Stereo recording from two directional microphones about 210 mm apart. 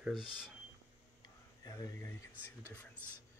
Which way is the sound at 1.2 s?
15° left (ahead or behind).